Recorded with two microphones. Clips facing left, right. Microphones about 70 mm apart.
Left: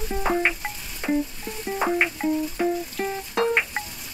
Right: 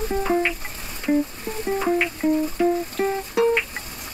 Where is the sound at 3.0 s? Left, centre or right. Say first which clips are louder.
Right 7 dB; centre.